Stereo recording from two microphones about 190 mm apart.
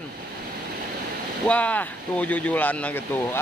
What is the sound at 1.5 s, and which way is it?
Speech, 10° left (ahead or behind).